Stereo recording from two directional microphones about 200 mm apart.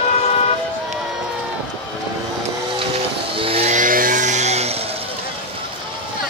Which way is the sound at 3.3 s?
25° right (ahead or behind).